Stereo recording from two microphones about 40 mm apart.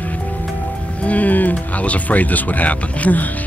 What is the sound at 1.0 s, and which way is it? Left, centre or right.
Speech, left.